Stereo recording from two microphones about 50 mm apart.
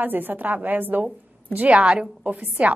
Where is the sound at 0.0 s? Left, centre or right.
Right.